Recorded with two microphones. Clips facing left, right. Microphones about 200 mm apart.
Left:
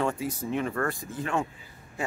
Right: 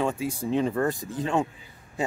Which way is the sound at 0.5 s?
25° right (ahead or behind).